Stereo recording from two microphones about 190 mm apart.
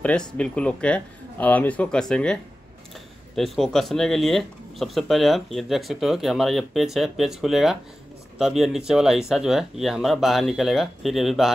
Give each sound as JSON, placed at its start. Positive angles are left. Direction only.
{"t": 0.0, "sound": "speech", "side_deg": 5}
{"t": 3.3, "sound": "speech", "side_deg": 0}